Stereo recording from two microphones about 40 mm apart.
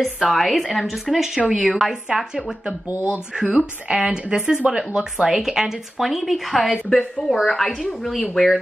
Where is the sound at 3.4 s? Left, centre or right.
Right.